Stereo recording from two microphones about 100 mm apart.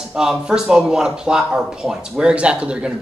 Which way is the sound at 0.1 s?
5° right (ahead or behind).